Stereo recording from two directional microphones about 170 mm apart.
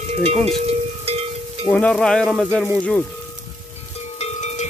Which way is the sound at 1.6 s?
5° left (ahead or behind).